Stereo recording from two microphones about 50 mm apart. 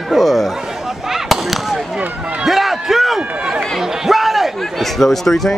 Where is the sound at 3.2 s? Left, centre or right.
Right.